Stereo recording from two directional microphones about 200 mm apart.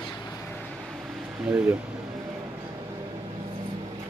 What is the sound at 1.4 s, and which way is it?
Speech, 10° right (ahead or behind).